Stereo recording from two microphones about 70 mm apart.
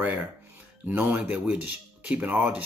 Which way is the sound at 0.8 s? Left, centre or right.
Right.